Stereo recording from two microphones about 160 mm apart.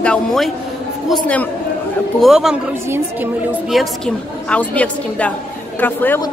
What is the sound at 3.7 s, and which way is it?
A woman's voice, centre (ahead or behind).